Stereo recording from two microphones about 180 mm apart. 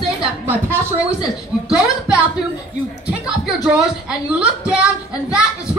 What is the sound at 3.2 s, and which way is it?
Speech, 5° right (ahead or behind).